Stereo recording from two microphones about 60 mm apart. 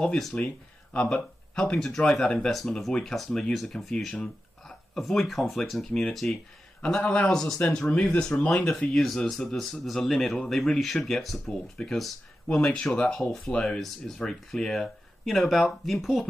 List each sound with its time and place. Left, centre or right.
0.3 s speech: left; by 6.0 s centre
6.8 s speech: centre